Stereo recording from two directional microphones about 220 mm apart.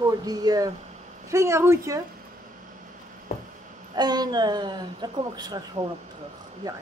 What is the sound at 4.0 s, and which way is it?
Speech, 20° right (ahead or behind).